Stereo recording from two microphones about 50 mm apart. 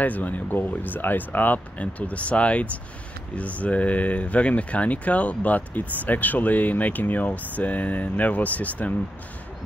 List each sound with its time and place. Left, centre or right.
0.0 s speech: left